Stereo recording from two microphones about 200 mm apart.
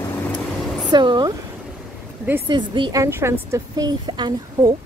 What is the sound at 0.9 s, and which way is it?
Speech, 20° right (ahead or behind).